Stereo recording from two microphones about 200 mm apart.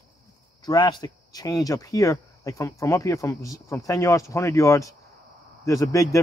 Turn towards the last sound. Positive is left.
turn(degrees=15)  # may be behind; listen again after turning